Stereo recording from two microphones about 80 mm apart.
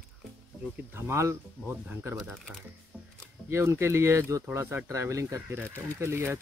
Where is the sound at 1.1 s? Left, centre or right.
Right.